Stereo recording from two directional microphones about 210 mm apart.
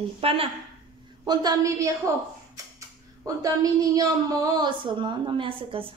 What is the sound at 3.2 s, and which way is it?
A woman's voice, 15° right (ahead or behind).